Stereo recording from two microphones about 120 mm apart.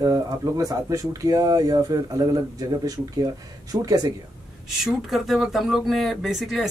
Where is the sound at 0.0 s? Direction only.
30° right (ahead or behind).